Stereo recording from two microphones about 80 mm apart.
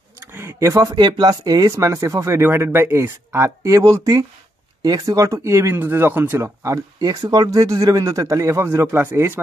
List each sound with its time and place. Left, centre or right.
0.2 s a sound: right
0.9 s speech: right
7.0 s speech: right